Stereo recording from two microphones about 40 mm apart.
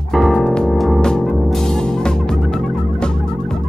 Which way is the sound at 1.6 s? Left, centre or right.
Centre.